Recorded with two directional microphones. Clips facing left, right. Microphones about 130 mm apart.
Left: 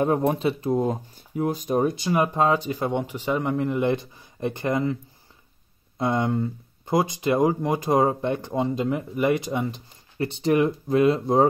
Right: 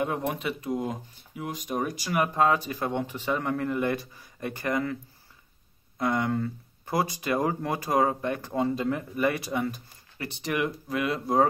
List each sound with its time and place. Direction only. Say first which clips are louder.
0.0 s speech: left 7 dB; 35° left (ahead or behind)
5.9 s speech: left 3 dB; 25° left (ahead or behind)